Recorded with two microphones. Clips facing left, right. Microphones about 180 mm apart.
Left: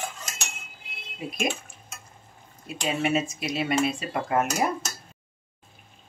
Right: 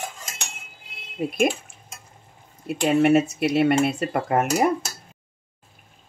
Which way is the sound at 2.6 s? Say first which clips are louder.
Right 9 dB; 60° right (ahead or behind).